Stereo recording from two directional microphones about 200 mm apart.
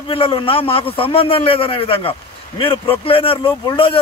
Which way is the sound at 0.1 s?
25° left (ahead or behind).